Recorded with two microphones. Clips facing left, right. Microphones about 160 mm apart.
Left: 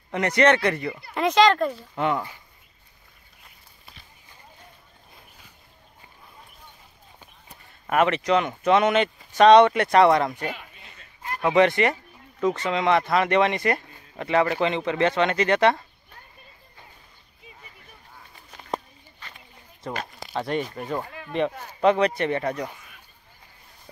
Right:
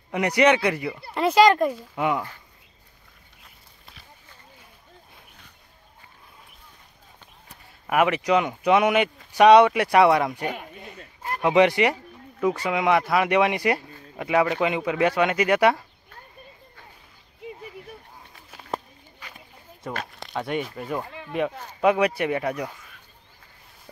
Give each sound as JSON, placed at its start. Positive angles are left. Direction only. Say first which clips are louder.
{"t": 0.1, "sound": "speech", "louder": "even", "side_deg": -10}
{"t": 7.8, "sound": "speech", "louder": "even", "side_deg": -10}
{"t": 10.5, "sound": "a sound", "louder": "right 4 dB", "side_deg": -50}
{"t": 11.4, "sound": "speech", "louder": "right 1 dB", "side_deg": -15}
{"t": 17.4, "sound": "a sound", "louder": "right 13 dB", "side_deg": -70}
{"t": 18.3, "sound": "walk", "louder": "left 1 dB", "side_deg": 0}
{"t": 19.8, "sound": "speech", "louder": "left 1 dB", "side_deg": 0}